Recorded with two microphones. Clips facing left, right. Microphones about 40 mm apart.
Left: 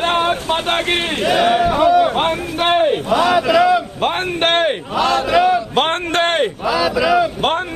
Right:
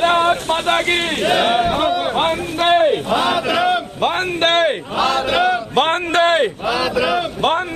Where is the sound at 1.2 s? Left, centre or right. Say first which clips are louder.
Left 2 dB; right.